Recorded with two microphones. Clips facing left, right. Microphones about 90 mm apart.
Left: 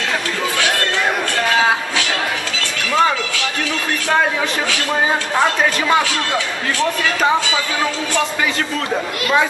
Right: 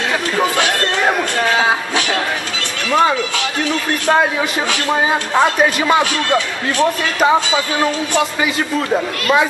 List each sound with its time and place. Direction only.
5.3 s a man's voice: 15° right (ahead or behind)